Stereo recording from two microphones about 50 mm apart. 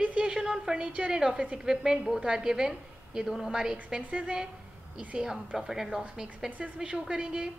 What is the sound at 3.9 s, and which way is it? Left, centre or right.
A woman's voice, right.